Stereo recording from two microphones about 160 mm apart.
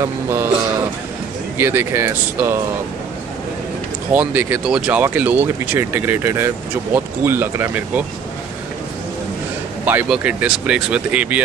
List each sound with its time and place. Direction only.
0.0 s speech: 15° right (ahead or behind)
1.6 s speech: 15° right (ahead or behind)
4.1 s speech: 10° right (ahead or behind)
9.8 s speech: 10° right (ahead or behind)